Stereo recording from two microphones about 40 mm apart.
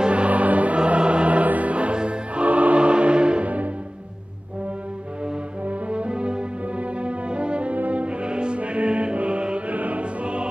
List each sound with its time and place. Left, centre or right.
0.0 s music: right
0.7 s music: right
3.4 s music: right
5.7 s brass instrument: right
7.7 s music: right